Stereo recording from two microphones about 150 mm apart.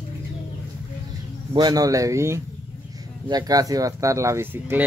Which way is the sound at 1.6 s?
25° right (ahead or behind).